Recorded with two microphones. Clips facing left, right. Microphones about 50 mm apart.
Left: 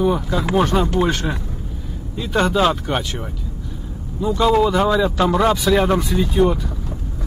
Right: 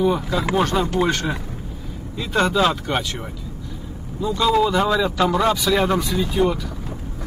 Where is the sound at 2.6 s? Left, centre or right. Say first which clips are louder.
Left 2 dB; centre.